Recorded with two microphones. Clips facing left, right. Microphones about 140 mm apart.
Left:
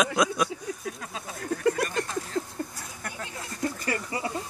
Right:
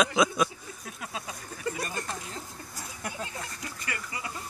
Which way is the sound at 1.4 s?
75° left (ahead or behind).